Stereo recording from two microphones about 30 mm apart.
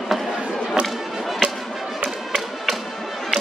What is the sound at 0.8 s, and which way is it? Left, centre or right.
Music, right.